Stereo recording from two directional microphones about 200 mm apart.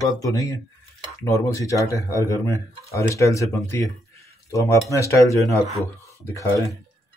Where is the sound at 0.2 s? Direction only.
15° left (ahead or behind).